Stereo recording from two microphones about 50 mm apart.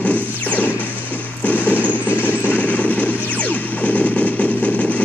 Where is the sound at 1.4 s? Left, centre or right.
Left.